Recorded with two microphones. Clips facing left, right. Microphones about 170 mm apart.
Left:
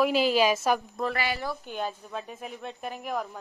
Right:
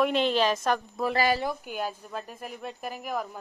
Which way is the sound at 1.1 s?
40° right (ahead or behind).